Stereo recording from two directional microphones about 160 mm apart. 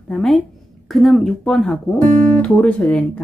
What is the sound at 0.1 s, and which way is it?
Speech, centre (ahead or behind).